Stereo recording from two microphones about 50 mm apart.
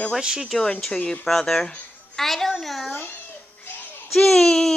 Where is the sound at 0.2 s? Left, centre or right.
Centre.